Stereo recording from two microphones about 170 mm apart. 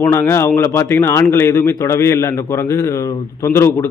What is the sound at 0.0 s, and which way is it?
A man's voice, 15° left (ahead or behind).